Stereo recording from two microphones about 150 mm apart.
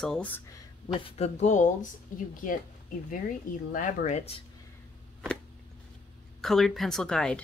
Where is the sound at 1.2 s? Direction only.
50° left (ahead or behind).